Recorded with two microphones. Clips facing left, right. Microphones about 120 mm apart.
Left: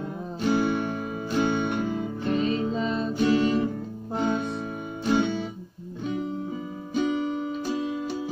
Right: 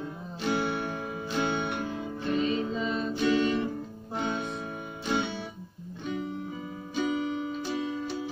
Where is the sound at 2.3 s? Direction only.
40° left (ahead or behind).